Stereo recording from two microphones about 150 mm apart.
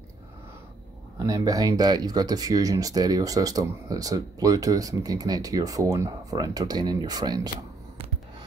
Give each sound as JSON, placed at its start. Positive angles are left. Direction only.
{"t": 1.2, "sound": "speech", "side_deg": -25}